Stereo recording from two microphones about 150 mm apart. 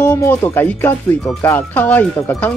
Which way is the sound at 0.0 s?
15° left (ahead or behind).